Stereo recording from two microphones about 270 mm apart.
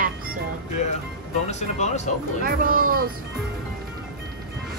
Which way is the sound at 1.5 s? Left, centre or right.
Left.